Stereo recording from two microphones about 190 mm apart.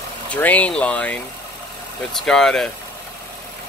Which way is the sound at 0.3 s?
10° left (ahead or behind).